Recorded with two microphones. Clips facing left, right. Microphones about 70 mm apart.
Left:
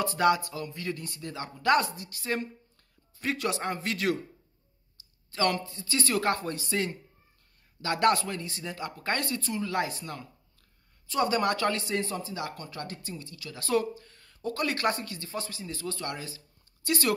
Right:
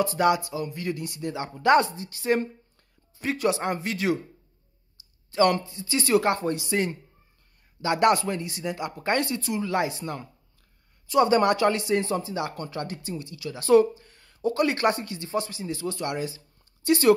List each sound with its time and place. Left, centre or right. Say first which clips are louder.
0.1 s speech: right 2 dB; centre; by 2.4 s right
3.2 s speech: right 5 dB; centre
5.3 s speech: right 7 dB; centre
11.2 s speech: right 5 dB; right
11.5 s speech: right 6 dB; centre
12.5 s speech: right 7 dB; right
12.8 s speech: right 6 dB; centre